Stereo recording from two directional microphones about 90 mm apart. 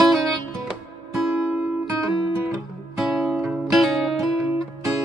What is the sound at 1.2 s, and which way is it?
Music, 10° right (ahead or behind).